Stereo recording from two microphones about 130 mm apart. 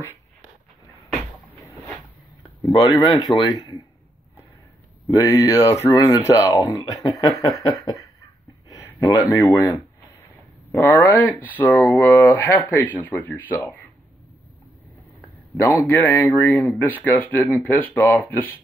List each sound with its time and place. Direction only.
2.6 s speech: 30° left (ahead or behind)
5.0 s speech: 30° left (ahead or behind)
8.6 s a sound: 25° left (ahead or behind)
9.4 s speech: 20° left (ahead or behind)
10.7 s speech: 15° left (ahead or behind)
15.6 s speech: 20° left (ahead or behind)